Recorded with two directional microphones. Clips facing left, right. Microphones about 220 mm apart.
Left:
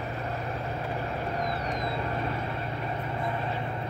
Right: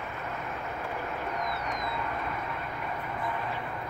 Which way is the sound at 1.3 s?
30° left (ahead or behind).